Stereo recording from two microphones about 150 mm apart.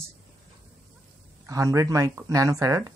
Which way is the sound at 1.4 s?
20° right (ahead or behind).